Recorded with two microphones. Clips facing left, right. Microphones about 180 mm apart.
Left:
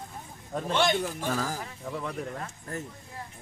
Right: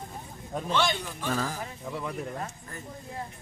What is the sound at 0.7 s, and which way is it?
Speech, 50° left (ahead or behind).